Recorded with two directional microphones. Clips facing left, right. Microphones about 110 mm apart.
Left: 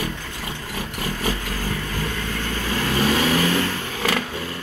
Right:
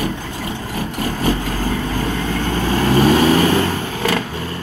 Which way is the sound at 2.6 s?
40° right (ahead or behind).